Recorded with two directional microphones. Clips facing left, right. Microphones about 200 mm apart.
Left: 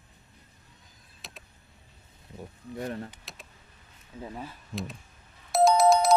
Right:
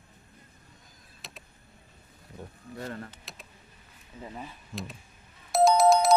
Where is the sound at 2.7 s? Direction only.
20° left (ahead or behind).